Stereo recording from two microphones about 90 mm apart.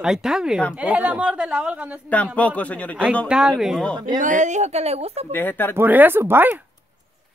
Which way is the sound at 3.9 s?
60° right (ahead or behind).